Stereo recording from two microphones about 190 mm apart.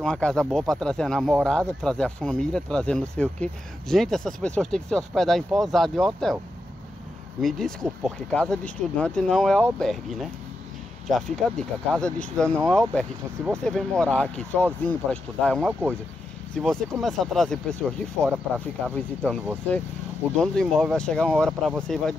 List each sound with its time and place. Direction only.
0.0 s speech: 5° left (ahead or behind)
7.4 s speech: centre (ahead or behind)
11.1 s speech: centre (ahead or behind)